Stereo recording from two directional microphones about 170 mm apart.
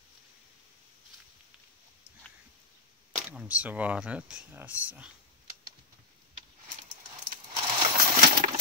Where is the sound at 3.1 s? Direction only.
5° right (ahead or behind).